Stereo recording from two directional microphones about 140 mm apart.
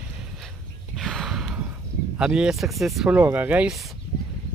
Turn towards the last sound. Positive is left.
turn(degrees=-10)  # may be behind; listen again after turning